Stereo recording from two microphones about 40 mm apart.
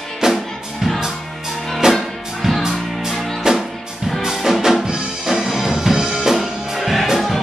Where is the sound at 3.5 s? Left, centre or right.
Centre.